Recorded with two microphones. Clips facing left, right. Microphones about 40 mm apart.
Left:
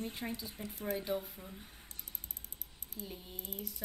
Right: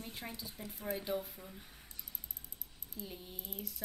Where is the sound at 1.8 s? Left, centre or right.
Left.